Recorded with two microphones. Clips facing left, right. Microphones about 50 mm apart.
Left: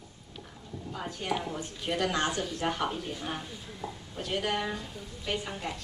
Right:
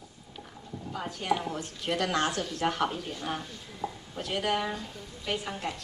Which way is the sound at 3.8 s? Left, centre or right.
Centre.